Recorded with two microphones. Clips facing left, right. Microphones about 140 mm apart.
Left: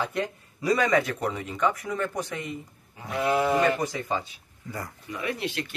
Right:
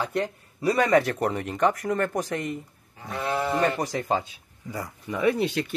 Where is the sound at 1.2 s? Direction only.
60° right (ahead or behind); by 1.9 s 80° right.